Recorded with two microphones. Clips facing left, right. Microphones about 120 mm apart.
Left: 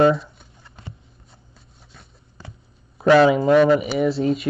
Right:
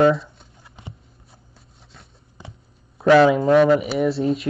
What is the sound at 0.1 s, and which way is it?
Shuffling cards, centre (ahead or behind).